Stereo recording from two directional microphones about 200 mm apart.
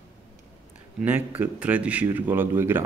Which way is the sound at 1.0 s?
10° right (ahead or behind).